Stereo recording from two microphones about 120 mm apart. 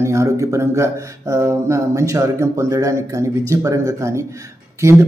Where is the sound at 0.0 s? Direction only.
25° right (ahead or behind).